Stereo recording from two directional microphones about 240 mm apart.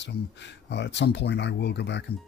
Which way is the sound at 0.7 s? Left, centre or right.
Left.